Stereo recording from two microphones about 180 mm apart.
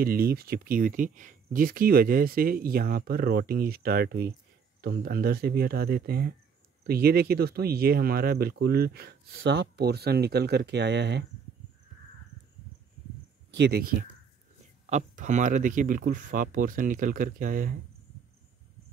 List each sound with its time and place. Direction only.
0.0 s speech: 55° right (ahead or behind); by 11.2 s 70° right (ahead or behind)
13.6 s speech: 60° right (ahead or behind)
14.9 s speech: 40° right (ahead or behind)